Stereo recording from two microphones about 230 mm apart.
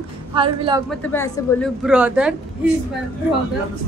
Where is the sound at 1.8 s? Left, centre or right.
Centre.